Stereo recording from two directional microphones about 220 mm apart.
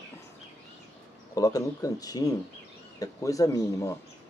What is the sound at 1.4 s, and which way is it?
Speech, 15° left (ahead or behind).